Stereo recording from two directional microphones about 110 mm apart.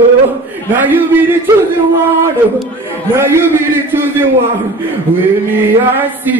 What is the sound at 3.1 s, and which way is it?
Speech, 25° right (ahead or behind).